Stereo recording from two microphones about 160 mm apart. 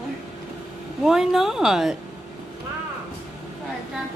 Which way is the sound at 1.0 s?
Centre (ahead or behind).